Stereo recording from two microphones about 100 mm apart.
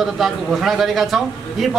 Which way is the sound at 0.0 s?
Centre (ahead or behind).